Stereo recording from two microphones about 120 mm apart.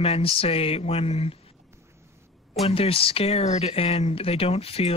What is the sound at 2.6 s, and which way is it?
Speech, 50° left (ahead or behind).